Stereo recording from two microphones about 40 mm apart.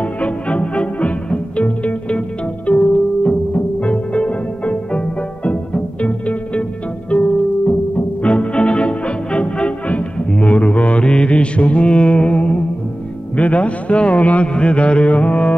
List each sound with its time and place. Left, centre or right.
0.0 s music: left
13.4 s a man's voice: left